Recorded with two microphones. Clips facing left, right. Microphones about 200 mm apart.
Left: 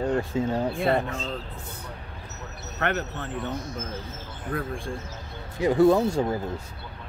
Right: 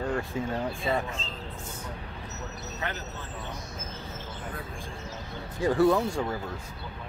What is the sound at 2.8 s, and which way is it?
Speech, 65° left (ahead or behind).